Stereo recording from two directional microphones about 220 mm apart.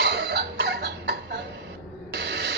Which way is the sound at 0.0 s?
50° right (ahead or behind).